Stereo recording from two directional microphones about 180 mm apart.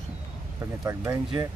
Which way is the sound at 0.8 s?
15° right (ahead or behind).